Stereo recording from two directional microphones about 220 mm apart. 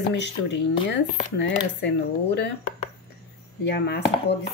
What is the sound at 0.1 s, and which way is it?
Speech, 50° left (ahead or behind).